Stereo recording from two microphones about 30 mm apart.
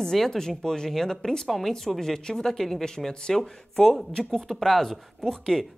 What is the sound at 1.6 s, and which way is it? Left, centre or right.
Speech, centre.